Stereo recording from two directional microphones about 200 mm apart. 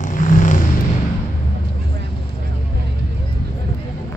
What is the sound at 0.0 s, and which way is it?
Vehicle, 40° left (ahead or behind).